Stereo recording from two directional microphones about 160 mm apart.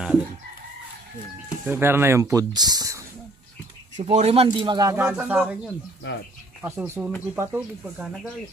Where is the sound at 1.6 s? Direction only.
15° right (ahead or behind).